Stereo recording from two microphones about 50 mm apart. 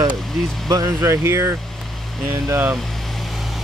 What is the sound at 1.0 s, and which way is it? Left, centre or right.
Speech, right.